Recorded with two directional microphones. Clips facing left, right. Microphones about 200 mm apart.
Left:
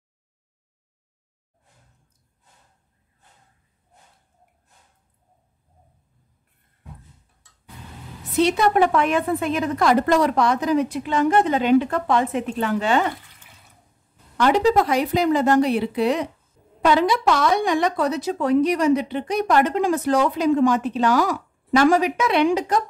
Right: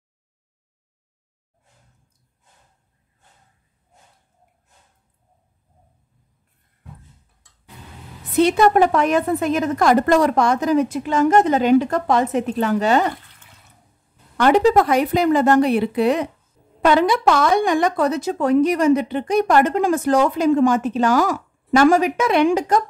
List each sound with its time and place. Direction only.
8.4 s speech: 50° right (ahead or behind)
14.3 s speech: 55° right (ahead or behind)